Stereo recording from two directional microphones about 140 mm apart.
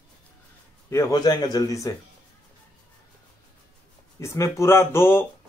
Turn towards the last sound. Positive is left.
turn(degrees=15)  # may be behind; listen again after turning